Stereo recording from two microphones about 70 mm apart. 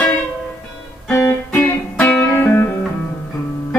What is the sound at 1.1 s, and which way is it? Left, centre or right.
Music, left.